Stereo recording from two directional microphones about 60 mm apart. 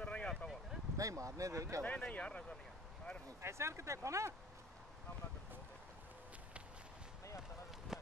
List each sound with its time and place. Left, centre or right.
0.0 s a sound: centre
0.9 s speech: right
1.8 s speech: left
3.3 s speech: right
7.9 s run: centre